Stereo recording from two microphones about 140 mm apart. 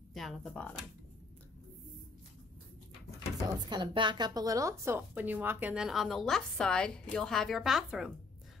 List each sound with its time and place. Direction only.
0.1 s a woman's voice: centre (ahead or behind)
3.6 s a woman's voice: 30° right (ahead or behind); by 5.9 s 10° right (ahead or behind)
5.9 s a woman's voice: centre (ahead or behind)